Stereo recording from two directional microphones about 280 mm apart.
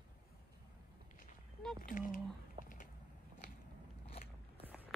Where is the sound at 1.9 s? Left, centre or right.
Left.